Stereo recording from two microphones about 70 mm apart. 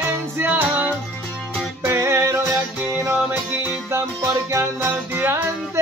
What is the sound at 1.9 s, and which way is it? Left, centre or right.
Music, right.